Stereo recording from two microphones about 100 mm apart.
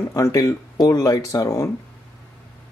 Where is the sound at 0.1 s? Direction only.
35° left (ahead or behind).